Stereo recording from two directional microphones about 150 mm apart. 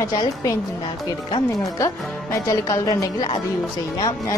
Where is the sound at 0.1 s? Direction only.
25° left (ahead or behind).